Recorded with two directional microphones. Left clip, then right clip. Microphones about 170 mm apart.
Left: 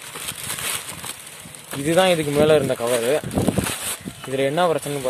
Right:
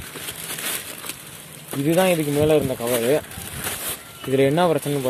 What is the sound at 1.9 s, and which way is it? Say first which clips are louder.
Speech: left 2 dB; 25° left (ahead or behind).